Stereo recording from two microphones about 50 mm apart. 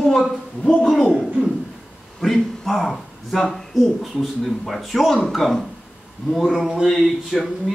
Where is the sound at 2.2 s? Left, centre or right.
Centre.